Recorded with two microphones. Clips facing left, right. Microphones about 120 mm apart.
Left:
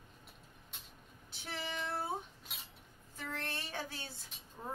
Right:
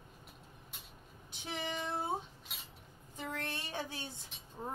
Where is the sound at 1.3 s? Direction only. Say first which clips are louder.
Right 3 dB; 20° right (ahead or behind).